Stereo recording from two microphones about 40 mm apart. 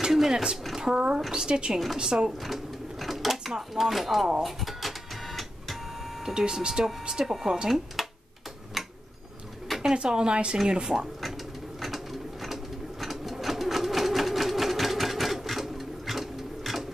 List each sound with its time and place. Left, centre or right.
0.0 s a sound: centre
0.9 s speech: right
2.4 s sewing machine: centre
3.5 s speech: centre
4.4 s a sound: centre
6.2 s speech: centre
8.8 s tick-tock: centre
9.9 s speech: right
11.8 s bird: centre
13.0 s sewing machine: centre